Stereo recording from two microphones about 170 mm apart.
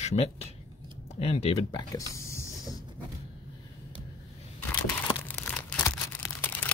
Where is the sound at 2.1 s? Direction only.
15° left (ahead or behind).